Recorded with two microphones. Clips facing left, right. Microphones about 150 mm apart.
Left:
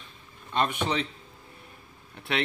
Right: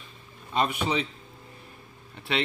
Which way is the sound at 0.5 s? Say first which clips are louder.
Right 1 dB; 10° right (ahead or behind).